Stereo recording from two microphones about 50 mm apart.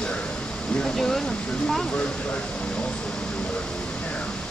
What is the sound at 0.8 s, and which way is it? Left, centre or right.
Speech, centre.